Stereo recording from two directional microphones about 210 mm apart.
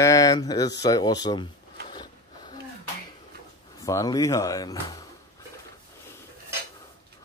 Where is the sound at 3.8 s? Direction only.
15° left (ahead or behind).